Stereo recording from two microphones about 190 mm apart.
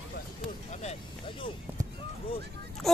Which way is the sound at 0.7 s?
35° left (ahead or behind).